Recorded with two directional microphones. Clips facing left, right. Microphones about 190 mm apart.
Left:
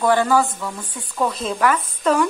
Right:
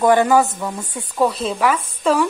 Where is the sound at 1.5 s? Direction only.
5° right (ahead or behind).